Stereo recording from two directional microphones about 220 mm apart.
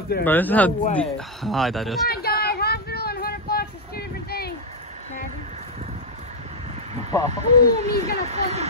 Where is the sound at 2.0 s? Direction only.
45° left (ahead or behind).